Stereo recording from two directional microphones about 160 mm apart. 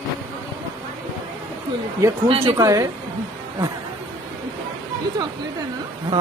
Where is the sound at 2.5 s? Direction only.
20° right (ahead or behind).